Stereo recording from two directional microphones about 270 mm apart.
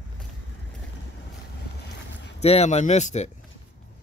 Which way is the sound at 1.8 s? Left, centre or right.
Left.